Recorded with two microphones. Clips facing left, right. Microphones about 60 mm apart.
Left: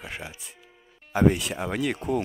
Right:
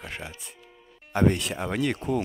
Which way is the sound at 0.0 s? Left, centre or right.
Centre.